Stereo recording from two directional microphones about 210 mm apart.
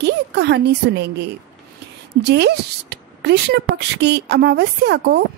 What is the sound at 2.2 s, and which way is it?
Speech, 55° right (ahead or behind).